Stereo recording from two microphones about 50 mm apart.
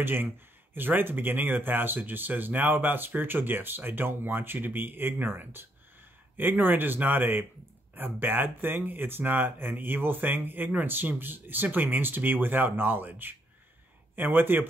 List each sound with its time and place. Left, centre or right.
0.0 s speech: right